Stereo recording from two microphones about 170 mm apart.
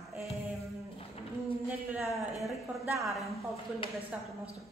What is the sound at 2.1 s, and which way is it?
A woman's voice, centre (ahead or behind).